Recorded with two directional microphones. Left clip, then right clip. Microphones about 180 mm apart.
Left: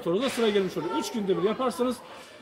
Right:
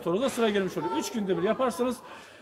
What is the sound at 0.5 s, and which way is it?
Speech, 35° right (ahead or behind).